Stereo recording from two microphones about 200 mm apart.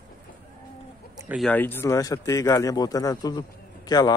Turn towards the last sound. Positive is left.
turn(degrees=20)  # may be behind; listen again after turning